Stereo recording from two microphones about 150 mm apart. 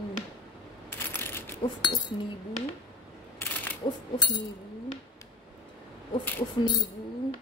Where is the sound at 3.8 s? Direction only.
30° left (ahead or behind).